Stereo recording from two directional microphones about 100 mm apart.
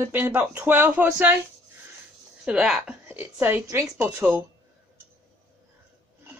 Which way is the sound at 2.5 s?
5° right (ahead or behind).